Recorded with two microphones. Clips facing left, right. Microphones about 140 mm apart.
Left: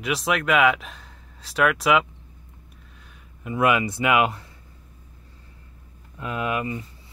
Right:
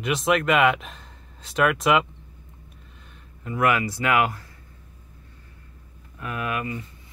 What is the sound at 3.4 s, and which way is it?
Speech, 20° left (ahead or behind).